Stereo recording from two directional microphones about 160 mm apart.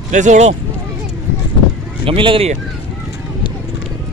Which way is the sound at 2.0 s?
35° right (ahead or behind).